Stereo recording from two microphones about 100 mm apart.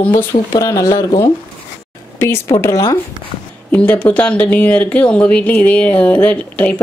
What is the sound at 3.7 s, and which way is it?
Speech, 15° left (ahead or behind).